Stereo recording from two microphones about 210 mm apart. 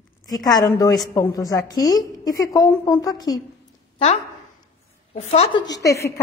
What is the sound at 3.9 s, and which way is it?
A woman's voice, 30° left (ahead or behind).